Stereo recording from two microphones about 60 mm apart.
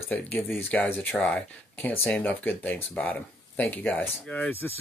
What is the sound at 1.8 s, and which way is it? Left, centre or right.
Speech, left.